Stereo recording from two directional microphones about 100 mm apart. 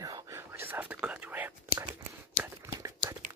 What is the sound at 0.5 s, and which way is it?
Whispering, 20° right (ahead or behind).